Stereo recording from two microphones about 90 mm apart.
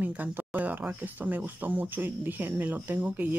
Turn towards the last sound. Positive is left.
turn(degrees=-20)  # may be behind; listen again after turning